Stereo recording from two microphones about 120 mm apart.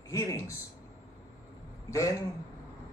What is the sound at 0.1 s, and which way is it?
Speech, 25° left (ahead or behind).